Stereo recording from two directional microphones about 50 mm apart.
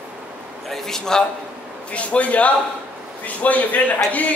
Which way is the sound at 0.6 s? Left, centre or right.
Centre.